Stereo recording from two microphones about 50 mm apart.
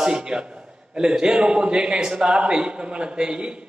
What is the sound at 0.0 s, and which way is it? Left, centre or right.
A man's voice, centre.